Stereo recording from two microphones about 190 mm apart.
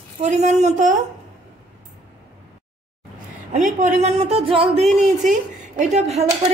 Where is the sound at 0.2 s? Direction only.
40° right (ahead or behind).